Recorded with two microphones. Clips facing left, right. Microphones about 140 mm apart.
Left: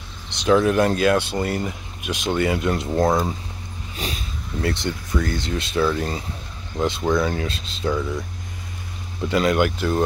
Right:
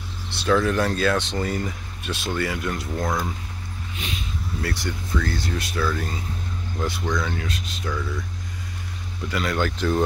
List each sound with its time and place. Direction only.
0.3 s speech: 15° left (ahead or behind)
3.9 s vehicle: 35° left (ahead or behind)
4.6 s speech: 20° left (ahead or behind)
9.2 s speech: 25° left (ahead or behind); by 10.0 s 10° left (ahead or behind)